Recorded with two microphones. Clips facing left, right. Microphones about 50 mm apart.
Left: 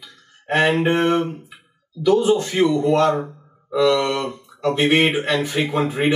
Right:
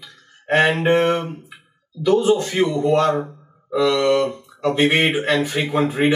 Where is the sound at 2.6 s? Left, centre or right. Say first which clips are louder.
Left 2 dB; centre.